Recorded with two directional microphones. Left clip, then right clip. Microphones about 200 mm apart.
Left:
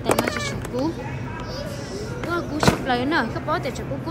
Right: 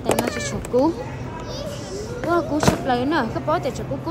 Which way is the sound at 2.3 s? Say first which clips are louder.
Right 2 dB; 5° right (ahead or behind).